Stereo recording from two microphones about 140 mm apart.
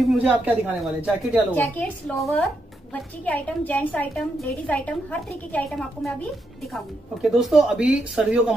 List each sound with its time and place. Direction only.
0.2 s speech: 10° right (ahead or behind)
1.5 s a woman's voice: 10° left (ahead or behind)
2.1 s speech: centre (ahead or behind)
2.9 s a woman's voice: 10° left (ahead or behind); by 8.5 s 10° right (ahead or behind)